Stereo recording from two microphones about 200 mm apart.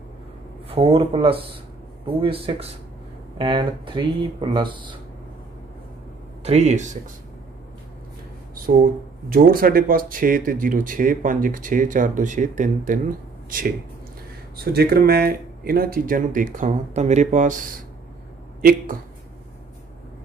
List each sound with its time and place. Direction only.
0.7 s speech: 30° right (ahead or behind)
6.4 s speech: 30° right (ahead or behind)
9.3 s speech: 45° right (ahead or behind)